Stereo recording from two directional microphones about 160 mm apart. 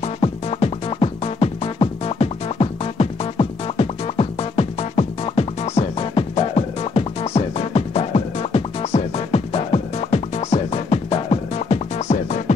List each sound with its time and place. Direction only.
0.0 s music: 40° left (ahead or behind)